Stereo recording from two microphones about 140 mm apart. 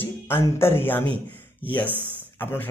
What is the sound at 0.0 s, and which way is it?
A man's voice, 15° left (ahead or behind).